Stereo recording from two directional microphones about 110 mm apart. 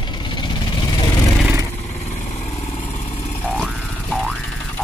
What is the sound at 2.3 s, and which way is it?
Vehicle, 85° left.